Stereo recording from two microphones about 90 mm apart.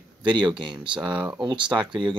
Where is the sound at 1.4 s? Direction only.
60° right (ahead or behind).